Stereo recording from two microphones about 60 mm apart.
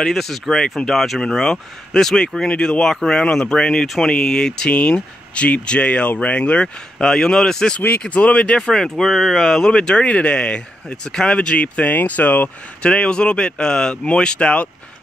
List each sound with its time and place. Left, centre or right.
0.0 s speech: centre
4.1 s speech: centre
9.7 s speech: centre